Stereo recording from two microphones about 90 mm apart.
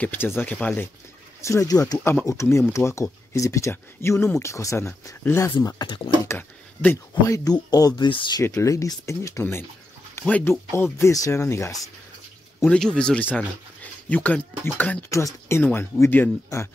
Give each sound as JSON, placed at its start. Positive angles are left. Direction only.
{"t": 0.0, "sound": "speech", "side_deg": 25}
{"t": 1.4, "sound": "speech", "side_deg": 35}
{"t": 2.0, "sound": "speech", "side_deg": 30}
{"t": 5.9, "sound": "speech", "side_deg": 60}
{"t": 6.2, "sound": "speech", "side_deg": 25}
{"t": 7.2, "sound": "speech", "side_deg": 35}
{"t": 7.5, "sound": "speech", "side_deg": 50}
{"t": 8.1, "sound": "speech", "side_deg": 70}
{"t": 8.6, "sound": "speech", "side_deg": 35}
{"t": 12.6, "sound": "speech", "side_deg": 10}
{"t": 15.0, "sound": "speech", "side_deg": 35}
{"t": 16.5, "sound": "speech", "side_deg": 35}